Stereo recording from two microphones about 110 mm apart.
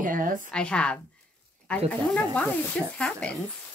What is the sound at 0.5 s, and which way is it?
Speech, 10° left (ahead or behind).